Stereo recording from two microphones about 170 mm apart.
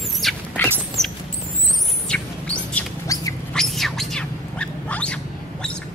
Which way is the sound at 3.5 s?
Centre (ahead or behind).